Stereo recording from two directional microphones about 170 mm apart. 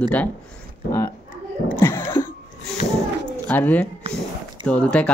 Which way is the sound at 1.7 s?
15° left (ahead or behind).